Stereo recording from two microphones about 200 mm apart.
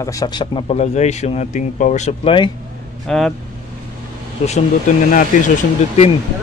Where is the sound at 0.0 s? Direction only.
15° left (ahead or behind).